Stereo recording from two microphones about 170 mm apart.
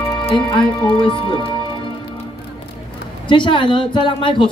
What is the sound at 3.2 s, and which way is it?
Speech, 30° left (ahead or behind).